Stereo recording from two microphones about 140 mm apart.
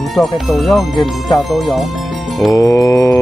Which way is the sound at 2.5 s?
25° left (ahead or behind).